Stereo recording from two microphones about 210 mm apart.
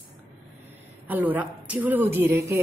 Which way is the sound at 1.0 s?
10° right (ahead or behind).